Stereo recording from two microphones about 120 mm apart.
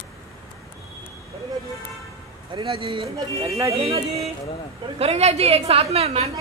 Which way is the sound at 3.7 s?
55° right (ahead or behind).